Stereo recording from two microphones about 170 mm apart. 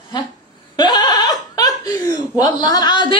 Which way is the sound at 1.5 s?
20° left (ahead or behind).